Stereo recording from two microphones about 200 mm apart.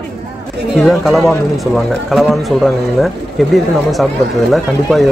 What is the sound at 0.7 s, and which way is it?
Speech, centre (ahead or behind).